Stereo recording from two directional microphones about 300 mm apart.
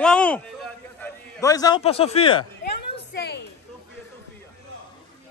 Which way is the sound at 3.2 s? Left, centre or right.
Left.